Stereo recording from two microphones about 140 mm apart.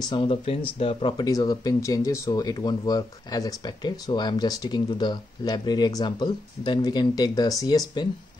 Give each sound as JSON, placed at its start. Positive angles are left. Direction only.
{"t": 0.0, "sound": "speech", "side_deg": 35}